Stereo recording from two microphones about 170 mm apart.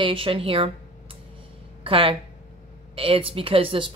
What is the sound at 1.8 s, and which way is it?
Speech, 30° right (ahead or behind).